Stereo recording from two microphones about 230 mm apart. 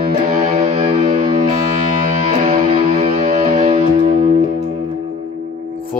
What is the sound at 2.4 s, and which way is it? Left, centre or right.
Music, right.